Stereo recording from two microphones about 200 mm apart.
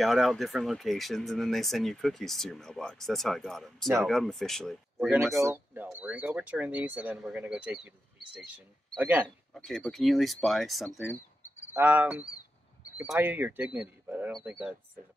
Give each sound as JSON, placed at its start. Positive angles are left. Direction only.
{"t": 0.0, "sound": "speech", "side_deg": 0}
{"t": 5.3, "sound": "speech", "side_deg": -15}
{"t": 8.9, "sound": "speech", "side_deg": -10}
{"t": 9.5, "sound": "speech", "side_deg": 0}